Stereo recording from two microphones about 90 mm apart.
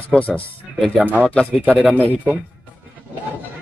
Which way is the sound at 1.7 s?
15° left (ahead or behind).